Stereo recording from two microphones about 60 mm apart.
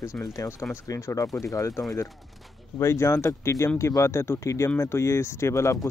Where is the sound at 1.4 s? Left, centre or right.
Left.